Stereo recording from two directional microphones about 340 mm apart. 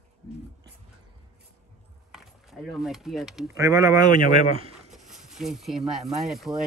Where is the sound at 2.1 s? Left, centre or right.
Centre.